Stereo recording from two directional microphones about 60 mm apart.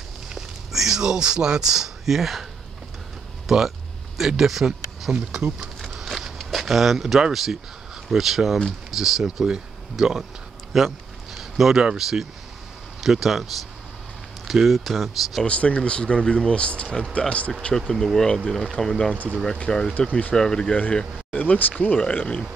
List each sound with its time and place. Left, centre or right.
0.3 s a sound: centre
3.4 s speech: centre
5.1 s speech: centre
5.8 s a sound: centre
8.1 s speech: centre
14.5 s speech: centre
15.4 s speech: left
17.7 s speech: centre
19.1 s speech: right
19.4 s speech: centre
20.3 s speech: centre
21.3 s speech: left